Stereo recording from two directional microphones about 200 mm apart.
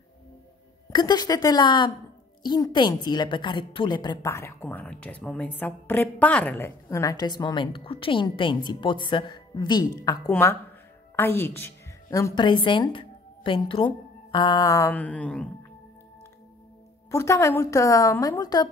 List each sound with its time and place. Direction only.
0.8 s a woman's voice: 20° left (ahead or behind); by 15.5 s 5° left (ahead or behind)
17.1 s a woman's voice: 15° left (ahead or behind)